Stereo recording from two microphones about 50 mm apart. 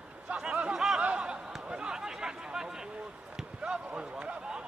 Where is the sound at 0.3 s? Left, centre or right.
Right.